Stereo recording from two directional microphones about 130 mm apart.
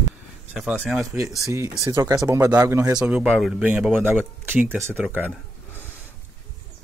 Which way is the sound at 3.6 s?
10° right (ahead or behind).